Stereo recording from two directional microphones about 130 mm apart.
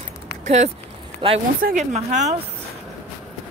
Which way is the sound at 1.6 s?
65° right (ahead or behind).